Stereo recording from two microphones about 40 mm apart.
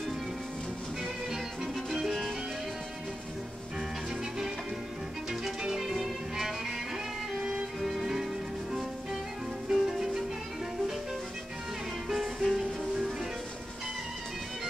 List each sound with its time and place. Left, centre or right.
1.9 s music: centre
5.3 s music: centre
9.7 s music: centre
12.1 s music: centre